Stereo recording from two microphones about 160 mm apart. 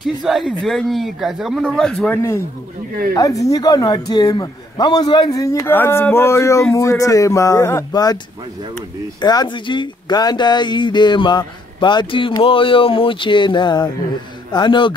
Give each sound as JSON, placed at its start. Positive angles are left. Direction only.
{"t": 0.0, "sound": "speech", "side_deg": 0}
{"t": 3.4, "sound": "a man's voice", "side_deg": 20}
{"t": 9.2, "sound": "a man's voice", "side_deg": 25}